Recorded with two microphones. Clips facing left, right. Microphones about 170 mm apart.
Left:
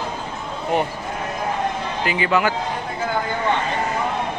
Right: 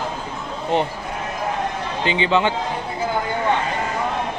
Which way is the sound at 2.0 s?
25° right (ahead or behind).